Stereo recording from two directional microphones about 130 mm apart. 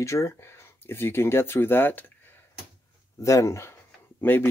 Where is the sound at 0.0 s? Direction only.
20° left (ahead or behind).